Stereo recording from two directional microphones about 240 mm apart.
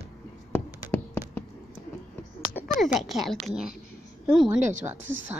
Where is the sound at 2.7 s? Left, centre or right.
Left.